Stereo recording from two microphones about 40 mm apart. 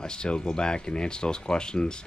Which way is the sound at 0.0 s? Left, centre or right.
Left.